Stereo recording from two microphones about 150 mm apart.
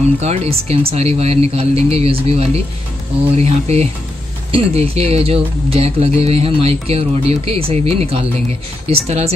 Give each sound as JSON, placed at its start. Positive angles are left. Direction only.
{"t": 0.2, "sound": "speech", "side_deg": -45}